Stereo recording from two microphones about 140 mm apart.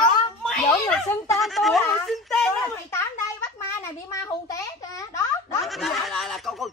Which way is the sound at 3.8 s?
20° left (ahead or behind).